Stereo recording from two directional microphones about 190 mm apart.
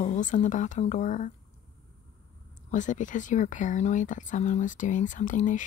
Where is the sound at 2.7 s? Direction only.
40° left (ahead or behind).